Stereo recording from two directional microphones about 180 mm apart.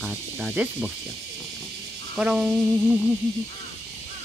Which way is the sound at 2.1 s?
5° right (ahead or behind).